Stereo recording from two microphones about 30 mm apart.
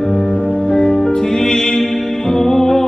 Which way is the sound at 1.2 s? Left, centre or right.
Left.